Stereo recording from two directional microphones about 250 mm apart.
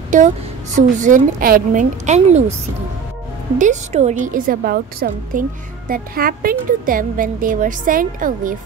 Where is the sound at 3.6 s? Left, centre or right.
Right.